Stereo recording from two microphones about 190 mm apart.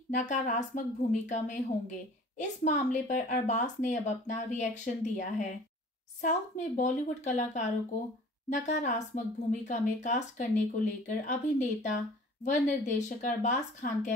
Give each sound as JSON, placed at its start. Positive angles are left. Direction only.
{"t": 0.1, "sound": "a woman's voice", "side_deg": 40}